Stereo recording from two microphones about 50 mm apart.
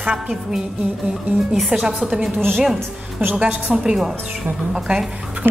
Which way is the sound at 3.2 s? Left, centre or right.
Right.